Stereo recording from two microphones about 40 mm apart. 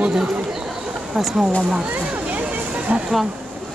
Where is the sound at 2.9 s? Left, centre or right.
Right.